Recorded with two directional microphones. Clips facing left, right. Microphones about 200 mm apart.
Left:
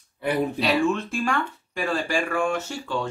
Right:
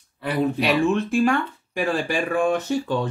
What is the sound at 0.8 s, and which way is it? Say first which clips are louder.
Speech: right 5 dB; 15° right (ahead or behind).